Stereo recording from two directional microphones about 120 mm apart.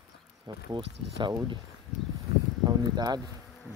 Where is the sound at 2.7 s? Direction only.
35° right (ahead or behind).